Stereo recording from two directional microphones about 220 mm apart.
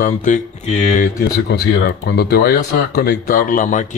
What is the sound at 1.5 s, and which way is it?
Speech, 45° left (ahead or behind).